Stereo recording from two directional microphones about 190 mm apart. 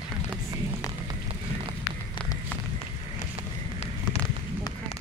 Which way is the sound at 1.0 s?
25° right (ahead or behind).